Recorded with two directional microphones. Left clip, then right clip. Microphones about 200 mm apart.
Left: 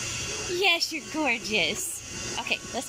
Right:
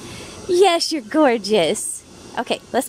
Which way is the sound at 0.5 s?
50° right (ahead or behind).